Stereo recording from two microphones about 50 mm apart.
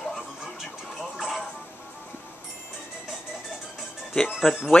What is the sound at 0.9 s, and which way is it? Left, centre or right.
Music, centre.